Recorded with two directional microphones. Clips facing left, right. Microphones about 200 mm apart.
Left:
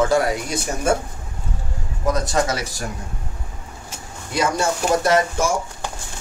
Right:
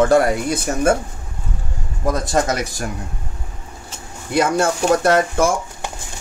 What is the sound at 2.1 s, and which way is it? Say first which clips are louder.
Speech: right 2 dB; 50° right (ahead or behind).